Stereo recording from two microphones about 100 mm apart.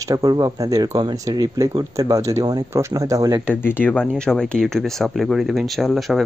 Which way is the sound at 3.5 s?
20° left (ahead or behind).